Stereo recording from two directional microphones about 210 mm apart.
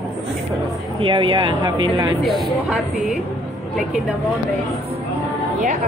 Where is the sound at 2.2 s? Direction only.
Centre (ahead or behind).